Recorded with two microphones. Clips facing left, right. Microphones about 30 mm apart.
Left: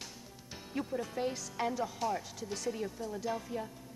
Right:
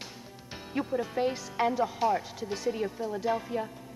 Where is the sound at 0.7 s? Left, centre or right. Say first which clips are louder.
Right 6 dB; right.